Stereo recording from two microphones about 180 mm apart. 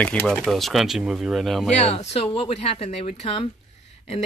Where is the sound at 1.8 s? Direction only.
35° left (ahead or behind).